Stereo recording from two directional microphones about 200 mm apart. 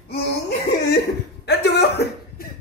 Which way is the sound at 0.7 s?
55° left (ahead or behind).